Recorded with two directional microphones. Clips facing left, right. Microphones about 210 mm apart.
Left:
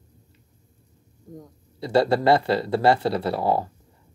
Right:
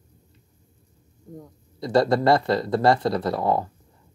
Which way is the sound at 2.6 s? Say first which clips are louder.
Even; 5° left (ahead or behind).